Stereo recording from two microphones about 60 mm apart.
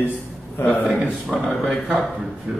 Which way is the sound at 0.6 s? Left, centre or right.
Left.